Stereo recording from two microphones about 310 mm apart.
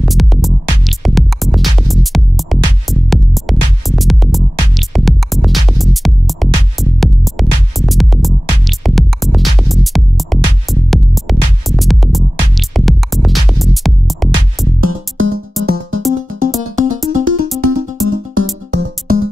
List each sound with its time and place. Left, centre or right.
0.0 s music: centre
14.8 s music: right
15.6 s music: right
17.2 s music: right